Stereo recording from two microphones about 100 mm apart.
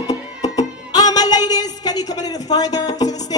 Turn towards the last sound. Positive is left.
turn(degrees=40)  # may be behind; listen again after turning